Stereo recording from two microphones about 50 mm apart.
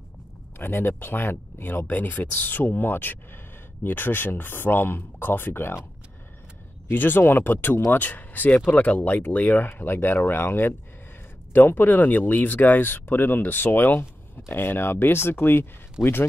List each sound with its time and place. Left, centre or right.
0.6 s speech: left
6.9 s speech: left